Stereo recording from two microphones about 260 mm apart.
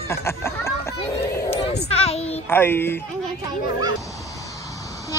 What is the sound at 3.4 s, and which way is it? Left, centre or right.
Speech, centre.